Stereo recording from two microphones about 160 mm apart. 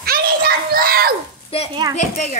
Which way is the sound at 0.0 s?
70° right (ahead or behind).